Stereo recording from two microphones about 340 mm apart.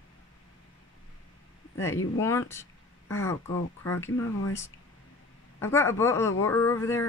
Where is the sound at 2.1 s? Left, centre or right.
Centre.